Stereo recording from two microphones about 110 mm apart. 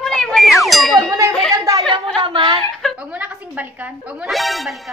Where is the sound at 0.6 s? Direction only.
Centre (ahead or behind).